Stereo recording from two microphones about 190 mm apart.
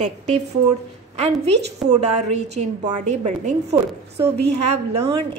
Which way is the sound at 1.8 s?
35° right (ahead or behind).